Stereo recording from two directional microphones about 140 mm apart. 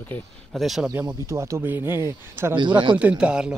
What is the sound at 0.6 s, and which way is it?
Speech, centre (ahead or behind).